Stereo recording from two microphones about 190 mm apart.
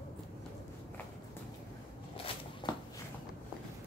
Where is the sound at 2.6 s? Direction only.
25° left (ahead or behind).